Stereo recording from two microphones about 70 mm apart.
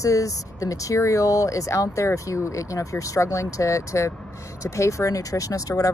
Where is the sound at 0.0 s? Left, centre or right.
Left.